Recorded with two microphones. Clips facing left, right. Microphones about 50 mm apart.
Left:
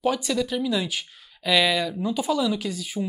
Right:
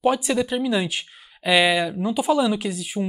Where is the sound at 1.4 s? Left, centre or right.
Centre.